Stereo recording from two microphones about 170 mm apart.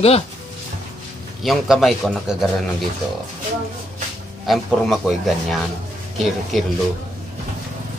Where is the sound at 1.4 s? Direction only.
Centre (ahead or behind).